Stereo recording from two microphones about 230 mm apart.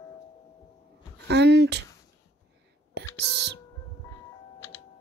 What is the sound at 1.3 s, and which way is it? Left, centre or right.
Speech, right.